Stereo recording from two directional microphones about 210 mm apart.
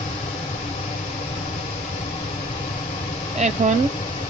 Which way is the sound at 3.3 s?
35° right (ahead or behind).